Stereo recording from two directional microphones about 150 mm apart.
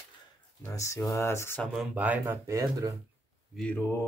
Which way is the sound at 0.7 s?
20° left (ahead or behind).